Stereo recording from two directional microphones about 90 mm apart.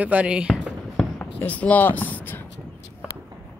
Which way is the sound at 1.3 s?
15° left (ahead or behind).